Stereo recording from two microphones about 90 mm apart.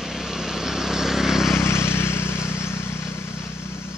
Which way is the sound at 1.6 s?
25° left (ahead or behind).